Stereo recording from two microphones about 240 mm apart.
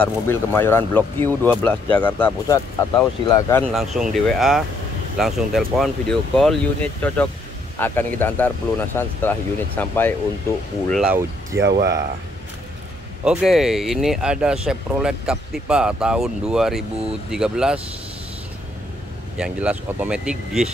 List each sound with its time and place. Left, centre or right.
0.0 s speech: centre
3.7 s speech: centre
10.9 s speech: centre
11.6 s speech: right
13.2 s speech: centre
19.3 s speech: centre